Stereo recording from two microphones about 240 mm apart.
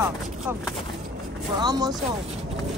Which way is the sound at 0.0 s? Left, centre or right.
Centre.